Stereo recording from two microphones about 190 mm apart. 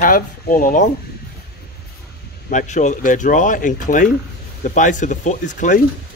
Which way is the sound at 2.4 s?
40° left (ahead or behind).